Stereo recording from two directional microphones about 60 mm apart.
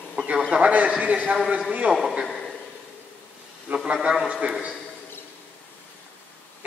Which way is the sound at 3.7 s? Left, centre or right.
Centre.